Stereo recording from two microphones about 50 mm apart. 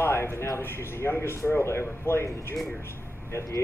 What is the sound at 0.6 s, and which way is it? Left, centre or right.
Speech, left.